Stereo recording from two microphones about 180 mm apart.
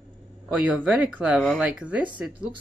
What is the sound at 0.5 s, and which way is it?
Speech, 5° right (ahead or behind).